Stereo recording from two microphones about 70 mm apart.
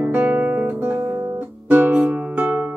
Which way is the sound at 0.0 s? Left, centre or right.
Right.